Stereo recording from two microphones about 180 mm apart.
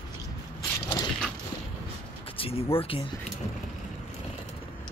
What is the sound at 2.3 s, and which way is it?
Speech, 30° left (ahead or behind).